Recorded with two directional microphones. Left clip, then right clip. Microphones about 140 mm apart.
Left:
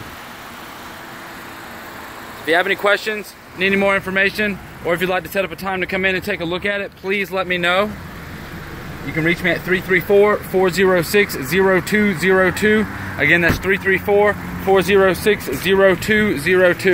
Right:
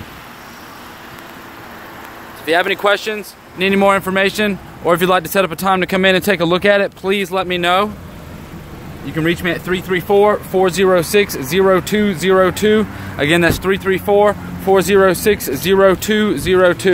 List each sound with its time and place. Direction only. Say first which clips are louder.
2.4 s speech: right 2 dB; 10° right (ahead or behind)
3.5 s speech: right 3 dB; 40° right (ahead or behind); by 6.9 s 85° right
7.1 s speech: right 3 dB; 30° right (ahead or behind)
9.1 s speech: even; 10° right (ahead or behind)
13.2 s speech: right 1 dB; 35° right (ahead or behind); by 16.9 s 15° right (ahead or behind)